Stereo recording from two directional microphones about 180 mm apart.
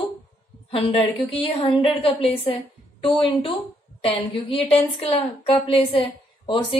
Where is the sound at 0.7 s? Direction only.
30° left (ahead or behind).